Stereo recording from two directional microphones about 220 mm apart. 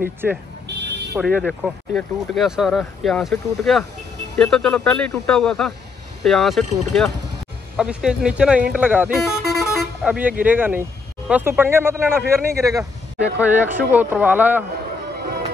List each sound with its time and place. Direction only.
0.7 s car alarm: 50° right (ahead or behind)
1.2 s speech: centre (ahead or behind)